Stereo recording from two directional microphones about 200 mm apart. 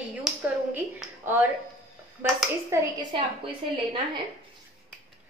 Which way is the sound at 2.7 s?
20° right (ahead or behind).